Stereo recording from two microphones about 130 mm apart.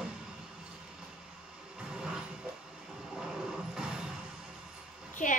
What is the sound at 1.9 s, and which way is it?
Vehicle, 5° right (ahead or behind).